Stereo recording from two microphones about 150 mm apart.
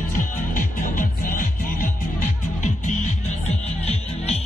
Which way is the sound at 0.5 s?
65° left (ahead or behind).